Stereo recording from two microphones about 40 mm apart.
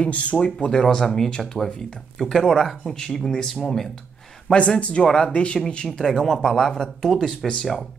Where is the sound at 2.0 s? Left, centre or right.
Centre.